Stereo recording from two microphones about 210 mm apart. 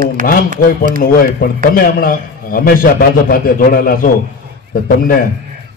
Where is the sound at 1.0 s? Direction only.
45° left (ahead or behind).